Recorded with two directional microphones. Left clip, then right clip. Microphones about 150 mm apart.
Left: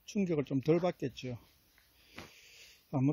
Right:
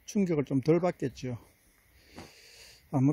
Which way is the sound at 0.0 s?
20° right (ahead or behind).